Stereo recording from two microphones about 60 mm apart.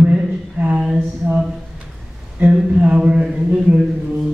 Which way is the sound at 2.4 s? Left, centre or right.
Right.